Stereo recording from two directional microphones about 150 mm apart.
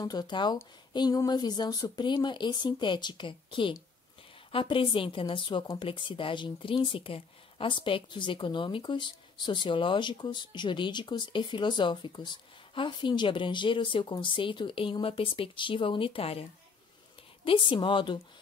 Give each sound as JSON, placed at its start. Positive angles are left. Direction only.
{"t": 0.0, "sound": "a woman's voice", "side_deg": 25}
{"t": 17.5, "sound": "a woman's voice", "side_deg": 35}